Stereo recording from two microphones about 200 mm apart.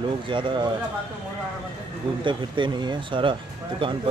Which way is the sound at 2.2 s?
25° right (ahead or behind).